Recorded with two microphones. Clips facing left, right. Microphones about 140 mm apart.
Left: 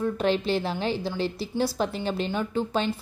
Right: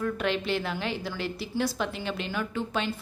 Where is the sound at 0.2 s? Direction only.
35° left (ahead or behind).